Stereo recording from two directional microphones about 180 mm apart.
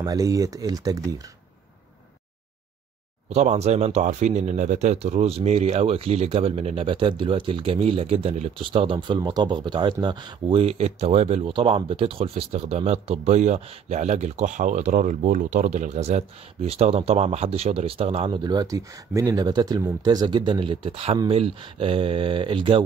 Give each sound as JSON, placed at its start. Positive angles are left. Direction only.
{"t": 0.0, "sound": "speech", "side_deg": -20}
{"t": 3.3, "sound": "speech", "side_deg": -35}